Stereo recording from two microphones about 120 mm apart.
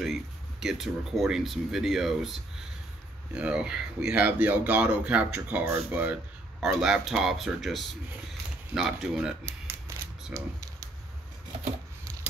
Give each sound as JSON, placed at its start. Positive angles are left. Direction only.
{"t": 0.0, "sound": "speech", "side_deg": 0}
{"t": 6.6, "sound": "speech", "side_deg": -5}
{"t": 9.5, "sound": "a sound", "side_deg": -20}
{"t": 10.3, "sound": "speech", "side_deg": -25}